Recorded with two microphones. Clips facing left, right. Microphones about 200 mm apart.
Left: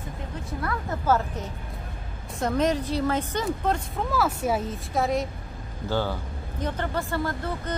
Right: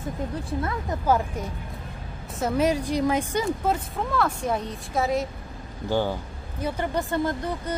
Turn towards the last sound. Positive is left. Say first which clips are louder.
# right 2 dB
turn(degrees=-15)  # may be behind; listen again after turning